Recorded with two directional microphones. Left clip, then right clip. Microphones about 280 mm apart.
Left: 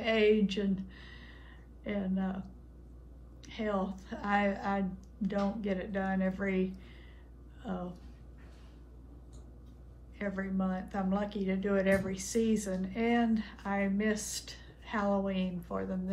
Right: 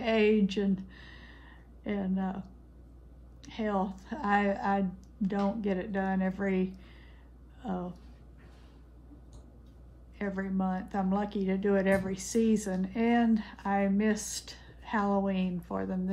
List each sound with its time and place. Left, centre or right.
0.0 s speech: right
10.1 s speech: right